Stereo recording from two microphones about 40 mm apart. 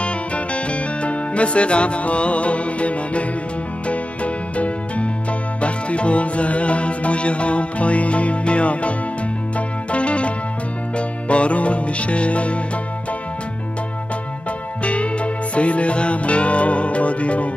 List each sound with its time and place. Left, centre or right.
0.7 s music: left
14.8 s music: left